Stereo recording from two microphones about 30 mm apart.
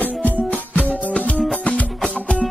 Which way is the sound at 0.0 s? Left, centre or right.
Left.